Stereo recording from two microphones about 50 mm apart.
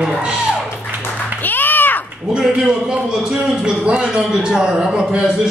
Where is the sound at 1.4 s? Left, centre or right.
Left.